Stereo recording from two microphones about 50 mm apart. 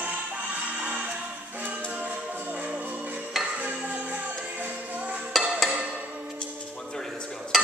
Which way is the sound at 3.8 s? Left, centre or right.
Right.